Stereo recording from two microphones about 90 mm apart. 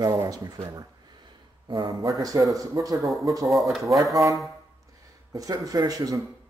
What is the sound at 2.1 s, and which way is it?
Speech, 40° right (ahead or behind).